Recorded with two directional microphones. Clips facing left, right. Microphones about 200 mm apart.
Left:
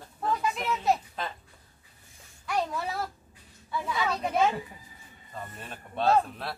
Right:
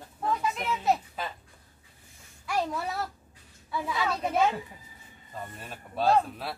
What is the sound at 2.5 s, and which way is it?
A woman's voice, centre (ahead or behind).